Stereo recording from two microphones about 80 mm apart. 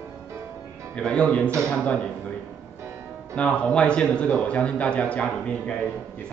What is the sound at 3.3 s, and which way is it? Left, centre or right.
A man's voice, centre.